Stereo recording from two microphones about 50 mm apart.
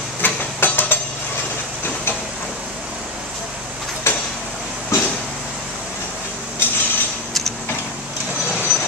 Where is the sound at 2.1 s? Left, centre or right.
Left.